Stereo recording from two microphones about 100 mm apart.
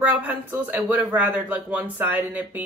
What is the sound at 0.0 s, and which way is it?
Speech, 15° right (ahead or behind).